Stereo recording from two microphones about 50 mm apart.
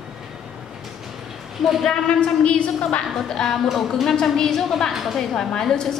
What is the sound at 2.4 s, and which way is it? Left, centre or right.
Speech, left.